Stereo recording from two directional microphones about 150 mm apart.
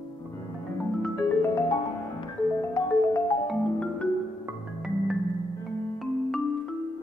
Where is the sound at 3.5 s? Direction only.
5° left (ahead or behind).